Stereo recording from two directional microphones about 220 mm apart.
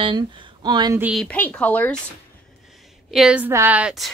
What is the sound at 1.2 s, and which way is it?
Speech, 5° left (ahead or behind).